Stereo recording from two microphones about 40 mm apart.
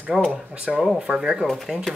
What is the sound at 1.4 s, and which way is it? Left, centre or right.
Speech, centre.